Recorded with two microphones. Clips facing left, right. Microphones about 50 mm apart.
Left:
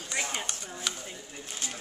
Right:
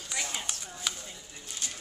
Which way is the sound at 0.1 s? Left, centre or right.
Left.